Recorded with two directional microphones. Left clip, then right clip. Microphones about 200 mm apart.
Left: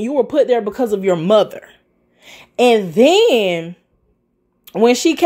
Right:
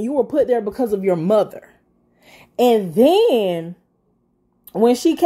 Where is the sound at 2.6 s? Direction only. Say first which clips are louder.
Left 3 dB; 15° left (ahead or behind).